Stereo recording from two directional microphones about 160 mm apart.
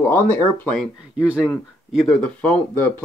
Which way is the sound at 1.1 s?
5° right (ahead or behind).